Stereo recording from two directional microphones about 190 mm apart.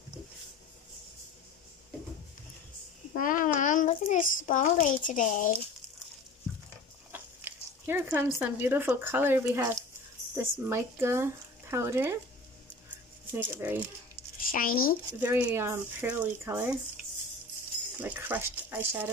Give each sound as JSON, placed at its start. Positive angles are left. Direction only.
{"t": 3.2, "sound": "a child's voice", "side_deg": 45}
{"t": 7.1, "sound": "speech", "side_deg": -10}
{"t": 13.3, "sound": "speech", "side_deg": -10}
{"t": 14.5, "sound": "speech", "side_deg": 50}
{"t": 15.1, "sound": "speech", "side_deg": -10}
{"t": 18.0, "sound": "speech", "side_deg": -10}